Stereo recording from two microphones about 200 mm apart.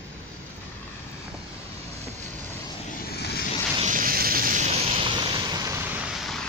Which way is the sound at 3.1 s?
50° left (ahead or behind).